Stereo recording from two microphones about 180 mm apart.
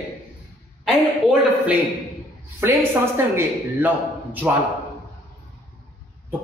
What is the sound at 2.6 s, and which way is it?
A woman's voice, 15° right (ahead or behind).